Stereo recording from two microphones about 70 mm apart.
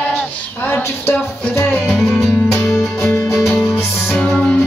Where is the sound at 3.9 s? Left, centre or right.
Left.